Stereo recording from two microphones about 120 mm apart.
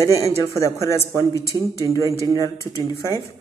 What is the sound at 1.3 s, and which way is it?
Speech, 30° right (ahead or behind).